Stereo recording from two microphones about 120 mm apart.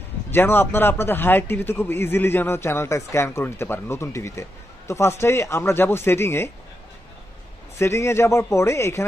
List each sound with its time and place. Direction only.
0.3 s a man's voice: 20° left (ahead or behind)
7.8 s a man's voice: 20° left (ahead or behind)